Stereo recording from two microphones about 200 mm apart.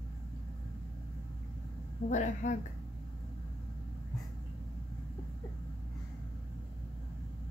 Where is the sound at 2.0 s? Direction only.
40° left (ahead or behind).